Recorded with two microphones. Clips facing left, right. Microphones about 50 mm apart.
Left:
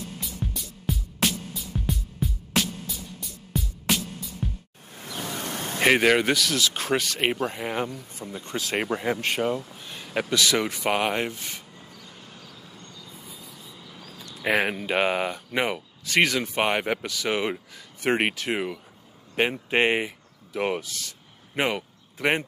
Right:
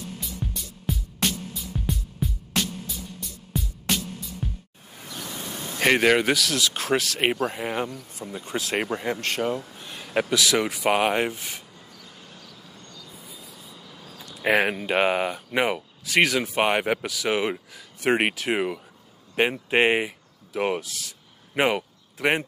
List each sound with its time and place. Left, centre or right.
0.2 s music: centre
5.0 s pink noise: left
5.8 s speech: centre
13.2 s train: centre
14.1 s speech: centre